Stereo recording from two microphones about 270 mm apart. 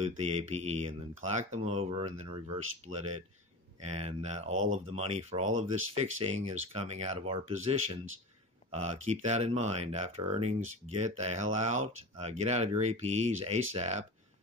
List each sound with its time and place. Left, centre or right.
0.0 s speech: right
4.5 s speech: right
4.9 s speech: right
5.5 s speech: right
6.2 s speech: right